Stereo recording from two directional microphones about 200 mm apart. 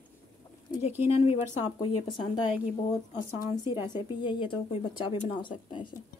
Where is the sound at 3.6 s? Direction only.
20° left (ahead or behind).